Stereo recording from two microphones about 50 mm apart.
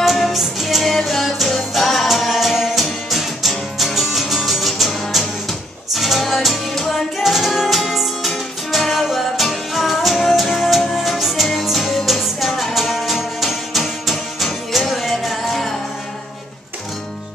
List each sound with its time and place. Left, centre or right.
0.0 s music: centre